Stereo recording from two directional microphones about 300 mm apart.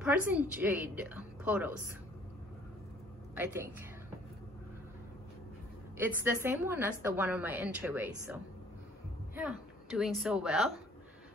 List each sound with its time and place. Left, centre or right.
0.0 s a woman's voice: centre
3.3 s a woman's voice: centre
5.9 s a woman's voice: centre